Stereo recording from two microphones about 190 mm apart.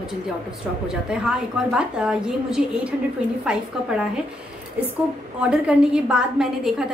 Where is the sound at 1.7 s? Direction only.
5° right (ahead or behind).